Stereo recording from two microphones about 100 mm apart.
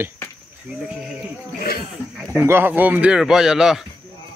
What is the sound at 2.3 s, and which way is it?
Speech, 25° right (ahead or behind).